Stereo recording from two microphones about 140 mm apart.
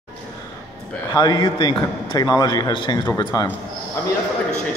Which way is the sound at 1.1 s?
30° left (ahead or behind).